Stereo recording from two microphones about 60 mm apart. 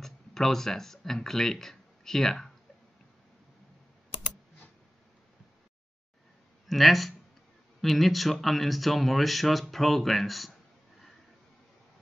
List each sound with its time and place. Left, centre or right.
0.0 s speech: centre
6.7 s speech: centre